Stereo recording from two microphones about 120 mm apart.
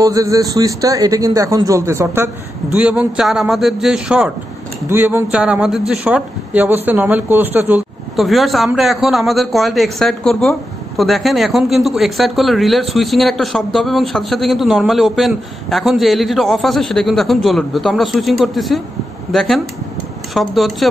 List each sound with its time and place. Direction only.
0.0 s speech: 30° right (ahead or behind)
2.7 s a man's voice: 10° right (ahead or behind)
4.8 s speech: 20° right (ahead or behind)
5.3 s a man's voice: 5° right (ahead or behind)
8.2 s a man's voice: centre (ahead or behind)